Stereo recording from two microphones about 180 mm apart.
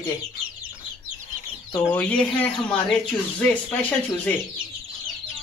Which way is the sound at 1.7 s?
10° left (ahead or behind).